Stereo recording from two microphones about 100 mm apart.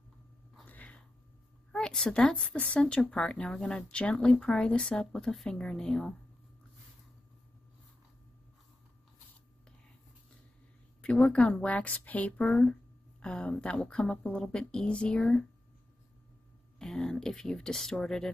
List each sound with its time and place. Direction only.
0.7 s a sound: 15° left (ahead or behind)
1.7 s a woman's voice: 5° left (ahead or behind)
11.0 s a woman's voice: 5° left (ahead or behind)
16.7 s speech: 5° left (ahead or behind)